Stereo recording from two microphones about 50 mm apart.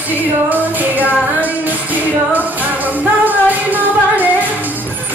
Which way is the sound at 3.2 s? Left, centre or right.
Right.